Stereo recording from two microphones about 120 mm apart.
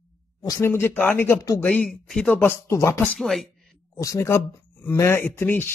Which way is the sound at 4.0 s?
25° left (ahead or behind).